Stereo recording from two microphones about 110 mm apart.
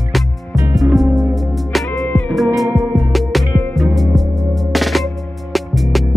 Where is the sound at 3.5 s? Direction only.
25° left (ahead or behind).